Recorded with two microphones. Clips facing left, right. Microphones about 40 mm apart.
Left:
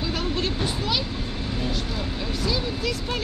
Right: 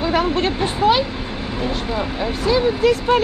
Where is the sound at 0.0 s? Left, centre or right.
Right.